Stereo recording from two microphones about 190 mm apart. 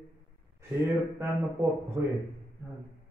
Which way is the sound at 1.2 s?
15° right (ahead or behind).